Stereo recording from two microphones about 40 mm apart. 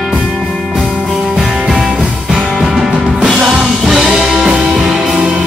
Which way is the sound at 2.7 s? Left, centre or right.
Centre.